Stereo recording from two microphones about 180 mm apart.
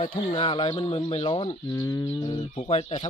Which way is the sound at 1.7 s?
15° left (ahead or behind).